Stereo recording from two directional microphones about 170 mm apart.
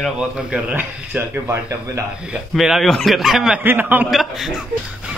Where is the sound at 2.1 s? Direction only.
5° right (ahead or behind).